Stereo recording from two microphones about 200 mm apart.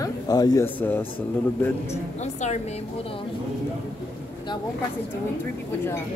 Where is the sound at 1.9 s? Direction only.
35° left (ahead or behind).